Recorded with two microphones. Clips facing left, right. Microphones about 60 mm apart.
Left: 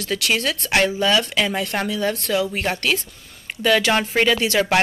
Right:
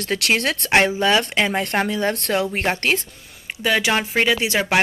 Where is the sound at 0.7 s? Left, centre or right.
Right.